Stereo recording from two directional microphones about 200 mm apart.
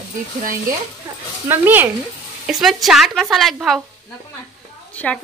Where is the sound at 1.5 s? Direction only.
10° right (ahead or behind).